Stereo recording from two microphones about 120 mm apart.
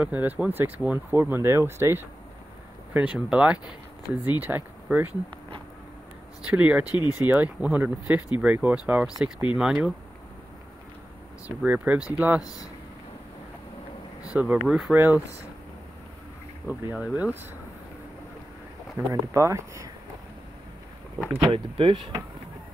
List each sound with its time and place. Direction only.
0.0 s speech: 15° right (ahead or behind)
6.4 s speech: 10° right (ahead or behind)
6.9 s speech: 35° left (ahead or behind)
7.2 s speech: 10° right (ahead or behind)
11.4 s speech: 10° right (ahead or behind)
12.4 s speech: 30° left (ahead or behind)
14.3 s speech: 10° right (ahead or behind)
15.0 s speech: 15° right (ahead or behind)
16.6 s speech: 10° right (ahead or behind)
18.9 s speech: 25° right (ahead or behind)
21.5 s speech: 45° right (ahead or behind)